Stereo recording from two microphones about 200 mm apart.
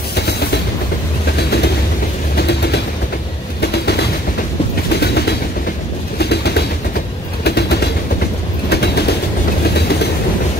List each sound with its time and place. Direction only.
0.1 s train: 55° left (ahead or behind)
5.0 s train: 55° left (ahead or behind)
6.1 s pigeon: 55° left (ahead or behind)
7.4 s train: 55° left (ahead or behind)